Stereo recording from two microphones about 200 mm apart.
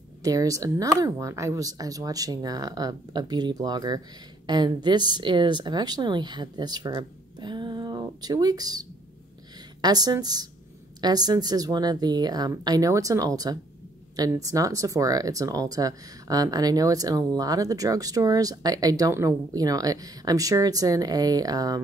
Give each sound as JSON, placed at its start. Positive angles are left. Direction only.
{"t": 0.2, "sound": "speech", "side_deg": -15}